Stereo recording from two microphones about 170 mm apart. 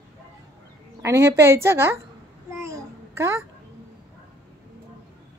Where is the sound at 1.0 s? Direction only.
15° right (ahead or behind).